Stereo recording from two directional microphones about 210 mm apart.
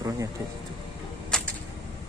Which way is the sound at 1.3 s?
5° left (ahead or behind).